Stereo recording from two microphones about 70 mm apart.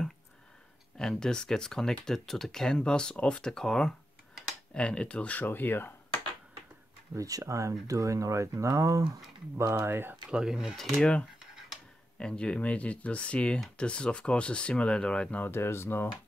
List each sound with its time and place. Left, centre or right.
0.9 s speech: centre; by 6.2 s left
7.2 s speech: right
9.8 s speech: right
10.3 s speech: centre
10.8 s speech: centre
12.2 s speech: centre
15.4 s speech: left